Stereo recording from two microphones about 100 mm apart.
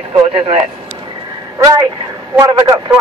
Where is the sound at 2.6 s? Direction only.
40° right (ahead or behind).